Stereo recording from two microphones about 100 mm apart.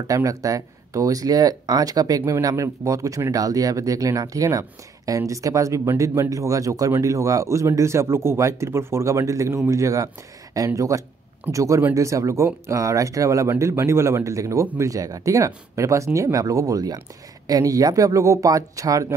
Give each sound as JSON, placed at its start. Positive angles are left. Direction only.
{"t": 0.0, "sound": "speech", "side_deg": -35}